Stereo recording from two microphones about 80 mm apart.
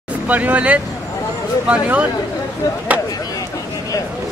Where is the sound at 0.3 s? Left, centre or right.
Centre.